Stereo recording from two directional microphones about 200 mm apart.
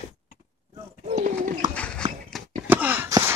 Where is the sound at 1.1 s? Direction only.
35° right (ahead or behind).